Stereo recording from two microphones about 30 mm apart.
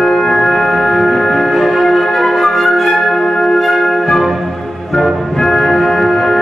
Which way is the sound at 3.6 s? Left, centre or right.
Centre.